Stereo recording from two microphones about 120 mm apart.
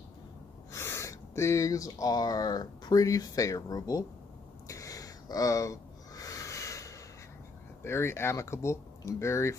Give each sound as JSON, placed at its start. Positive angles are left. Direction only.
{"t": 0.7, "sound": "speech", "side_deg": 20}
{"t": 4.6, "sound": "a sound", "side_deg": 30}
{"t": 7.8, "sound": "speech", "side_deg": 20}